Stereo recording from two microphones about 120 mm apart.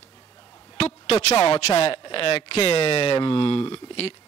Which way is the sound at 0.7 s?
55° left (ahead or behind).